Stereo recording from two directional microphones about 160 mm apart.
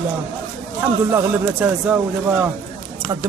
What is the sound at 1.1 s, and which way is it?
Speech, 10° right (ahead or behind).